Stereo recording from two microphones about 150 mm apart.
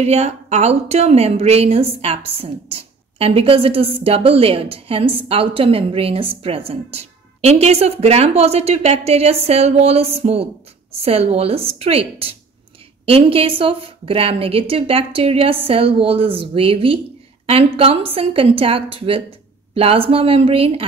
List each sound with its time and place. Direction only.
0.0 s a woman's voice: 45° right (ahead or behind)